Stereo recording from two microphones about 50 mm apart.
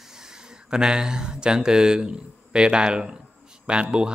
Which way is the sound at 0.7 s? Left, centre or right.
Centre.